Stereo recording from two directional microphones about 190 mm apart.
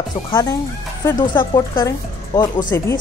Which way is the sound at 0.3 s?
20° left (ahead or behind).